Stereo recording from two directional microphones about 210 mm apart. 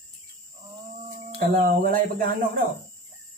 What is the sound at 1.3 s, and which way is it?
Speech, 40° right (ahead or behind).